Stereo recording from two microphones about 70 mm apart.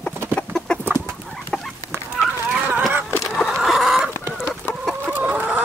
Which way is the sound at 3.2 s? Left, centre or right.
Centre.